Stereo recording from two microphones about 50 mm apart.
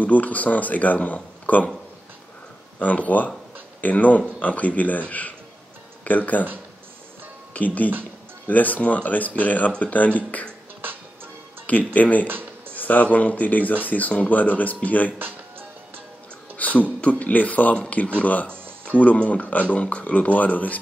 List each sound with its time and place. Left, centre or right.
0.0 s speech: left
2.8 s speech: left
7.5 s speech: left
11.6 s speech: left
12.3 s a sound: right
12.7 s speech: left
16.5 s speech: left